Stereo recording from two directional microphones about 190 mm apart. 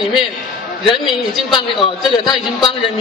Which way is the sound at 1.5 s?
25° left (ahead or behind).